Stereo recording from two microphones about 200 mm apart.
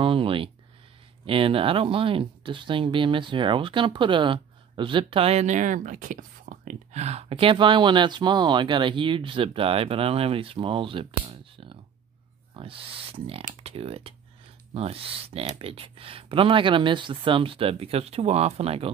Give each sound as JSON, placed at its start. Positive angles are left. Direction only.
{"t": 0.0, "sound": "speech", "side_deg": -25}